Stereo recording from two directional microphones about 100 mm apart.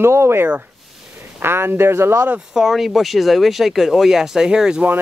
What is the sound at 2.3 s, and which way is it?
Speech, 5° right (ahead or behind).